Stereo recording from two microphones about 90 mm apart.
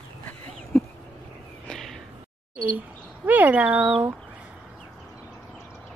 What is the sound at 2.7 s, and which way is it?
Speech, 20° right (ahead or behind).